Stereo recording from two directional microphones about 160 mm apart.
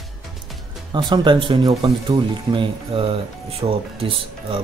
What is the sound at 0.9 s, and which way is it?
Speech, 30° right (ahead or behind).